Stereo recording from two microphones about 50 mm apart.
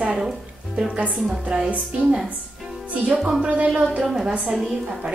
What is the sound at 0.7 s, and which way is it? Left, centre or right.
Speech, right.